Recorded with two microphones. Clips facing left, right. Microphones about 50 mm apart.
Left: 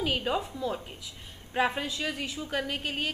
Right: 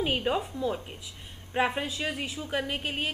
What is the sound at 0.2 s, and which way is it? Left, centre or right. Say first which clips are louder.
Speech: right 1 dB; centre.